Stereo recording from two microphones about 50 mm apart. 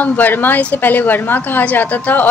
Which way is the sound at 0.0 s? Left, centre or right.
Left.